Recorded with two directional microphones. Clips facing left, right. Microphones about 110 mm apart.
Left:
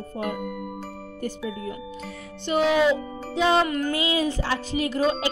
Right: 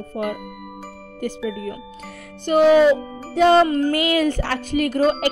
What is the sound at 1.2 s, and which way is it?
Speech, 80° right.